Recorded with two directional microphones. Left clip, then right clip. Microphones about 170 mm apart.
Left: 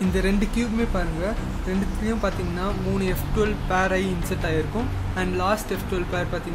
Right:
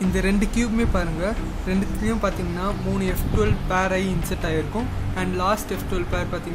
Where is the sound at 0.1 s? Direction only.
10° right (ahead or behind).